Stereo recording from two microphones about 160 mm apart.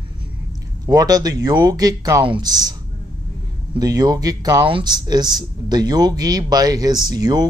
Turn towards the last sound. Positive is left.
turn(degrees=-25)  # may be behind; listen again after turning